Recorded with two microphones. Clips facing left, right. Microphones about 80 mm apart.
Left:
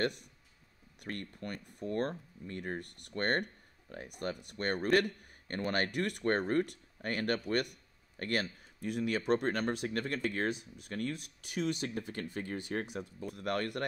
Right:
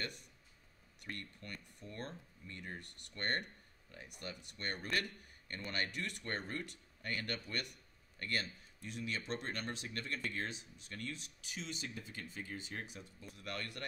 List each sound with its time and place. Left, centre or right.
0.0 s speech: left